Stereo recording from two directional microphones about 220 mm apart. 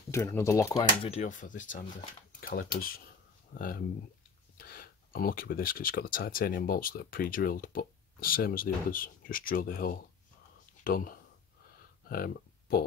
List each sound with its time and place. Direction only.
0.1 s speech: 15° left (ahead or behind)
1.0 s speech: 30° left (ahead or behind)